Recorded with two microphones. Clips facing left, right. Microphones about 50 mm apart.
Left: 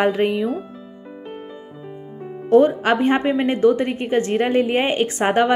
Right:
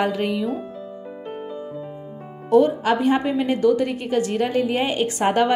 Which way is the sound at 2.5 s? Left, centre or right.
Left.